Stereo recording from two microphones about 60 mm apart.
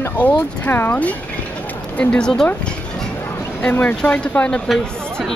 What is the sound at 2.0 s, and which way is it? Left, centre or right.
Speech, centre.